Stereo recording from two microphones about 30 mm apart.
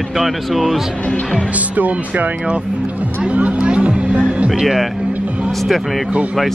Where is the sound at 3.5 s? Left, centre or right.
Right.